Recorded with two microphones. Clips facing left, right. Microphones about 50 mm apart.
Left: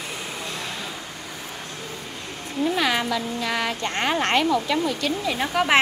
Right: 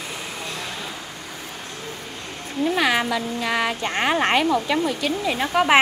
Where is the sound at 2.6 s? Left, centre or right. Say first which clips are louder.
Right 2 dB; centre.